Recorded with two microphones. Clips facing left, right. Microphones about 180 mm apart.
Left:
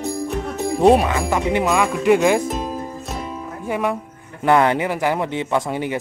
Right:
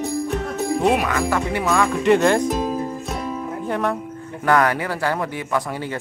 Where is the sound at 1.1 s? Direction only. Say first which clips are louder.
Left 2 dB; 20° left (ahead or behind).